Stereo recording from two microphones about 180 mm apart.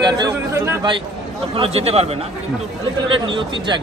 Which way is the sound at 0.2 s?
15° right (ahead or behind).